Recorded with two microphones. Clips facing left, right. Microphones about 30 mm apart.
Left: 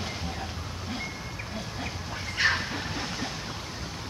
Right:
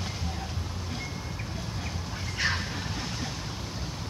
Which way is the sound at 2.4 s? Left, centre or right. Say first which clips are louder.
Left 4 dB; left.